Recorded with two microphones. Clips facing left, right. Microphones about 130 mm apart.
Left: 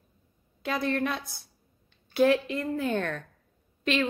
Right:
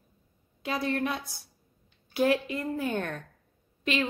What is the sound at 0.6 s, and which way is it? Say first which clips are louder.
A woman's voice: left 1 dB; 15° right (ahead or behind).